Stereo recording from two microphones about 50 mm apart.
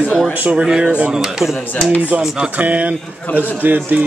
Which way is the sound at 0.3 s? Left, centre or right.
Right.